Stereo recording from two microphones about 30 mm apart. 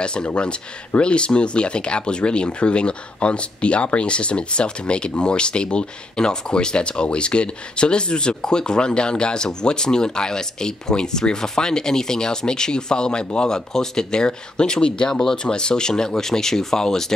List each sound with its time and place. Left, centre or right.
0.0 s speech: left; by 17.1 s centre